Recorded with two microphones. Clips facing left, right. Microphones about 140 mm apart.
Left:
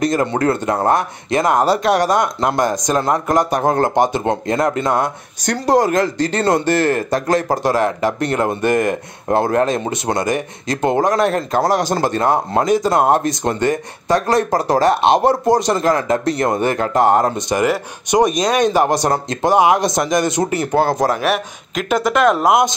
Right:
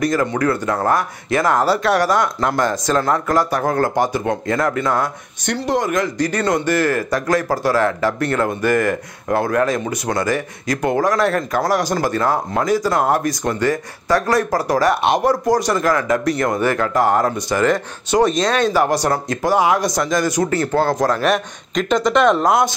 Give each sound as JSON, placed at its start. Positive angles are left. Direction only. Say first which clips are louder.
{"t": 0.0, "sound": "speech", "louder": "left 1 dB", "side_deg": 25}
{"t": 5.4, "sound": "speech", "louder": "left 5 dB", "side_deg": 40}